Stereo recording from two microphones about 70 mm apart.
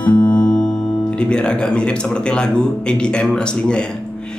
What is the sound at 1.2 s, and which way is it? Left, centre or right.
Speech, centre.